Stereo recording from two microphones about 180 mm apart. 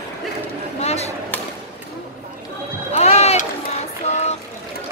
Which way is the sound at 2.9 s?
35° left (ahead or behind).